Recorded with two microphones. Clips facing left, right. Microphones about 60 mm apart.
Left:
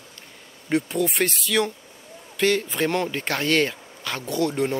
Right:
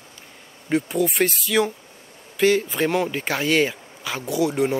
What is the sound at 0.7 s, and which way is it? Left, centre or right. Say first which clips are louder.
Speech: right 1 dB; centre.